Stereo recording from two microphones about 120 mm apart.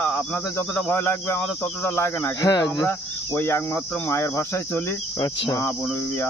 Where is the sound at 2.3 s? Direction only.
30° left (ahead or behind).